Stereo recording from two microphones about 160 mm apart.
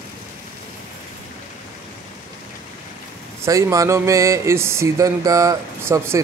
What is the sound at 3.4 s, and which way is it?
Speech, 20° right (ahead or behind).